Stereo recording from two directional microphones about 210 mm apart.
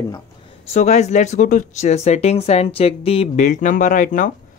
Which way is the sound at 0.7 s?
30° left (ahead or behind).